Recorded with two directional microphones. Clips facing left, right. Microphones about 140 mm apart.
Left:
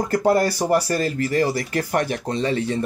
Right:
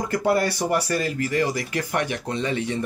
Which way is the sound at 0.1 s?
35° left (ahead or behind).